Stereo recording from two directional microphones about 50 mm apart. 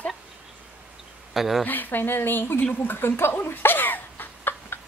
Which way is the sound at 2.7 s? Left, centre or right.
Left.